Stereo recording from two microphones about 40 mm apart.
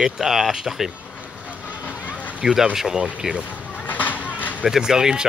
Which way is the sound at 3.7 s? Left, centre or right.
Left.